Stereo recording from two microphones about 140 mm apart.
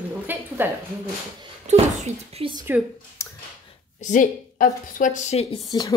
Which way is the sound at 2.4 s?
40° right (ahead or behind).